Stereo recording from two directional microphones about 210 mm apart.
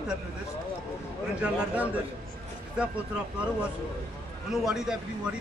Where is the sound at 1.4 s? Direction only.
5° right (ahead or behind).